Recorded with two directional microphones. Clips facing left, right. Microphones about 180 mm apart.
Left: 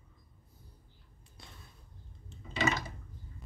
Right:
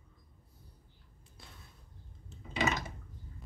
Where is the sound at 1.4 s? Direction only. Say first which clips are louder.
Left 1 dB; 5° right (ahead or behind).